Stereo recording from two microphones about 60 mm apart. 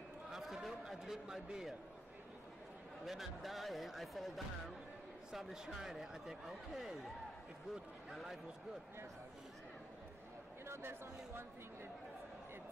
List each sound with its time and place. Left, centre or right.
0.3 s a sound: centre
3.1 s a man's voice: centre
10.6 s speech: right